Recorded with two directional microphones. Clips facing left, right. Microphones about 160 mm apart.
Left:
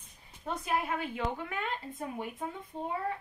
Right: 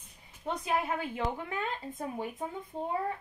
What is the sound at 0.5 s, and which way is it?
Speech, 25° right (ahead or behind).